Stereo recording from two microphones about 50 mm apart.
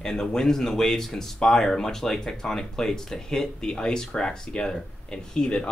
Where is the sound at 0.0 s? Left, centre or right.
Centre.